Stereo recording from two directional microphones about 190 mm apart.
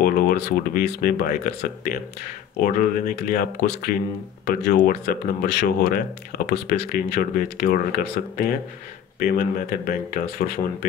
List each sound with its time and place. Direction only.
0.0 s speech: 50° left (ahead or behind)